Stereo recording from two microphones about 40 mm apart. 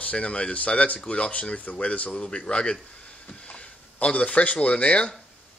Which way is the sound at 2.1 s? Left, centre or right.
Left.